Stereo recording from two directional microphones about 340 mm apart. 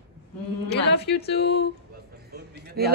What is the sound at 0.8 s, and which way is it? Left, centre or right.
Speech, left.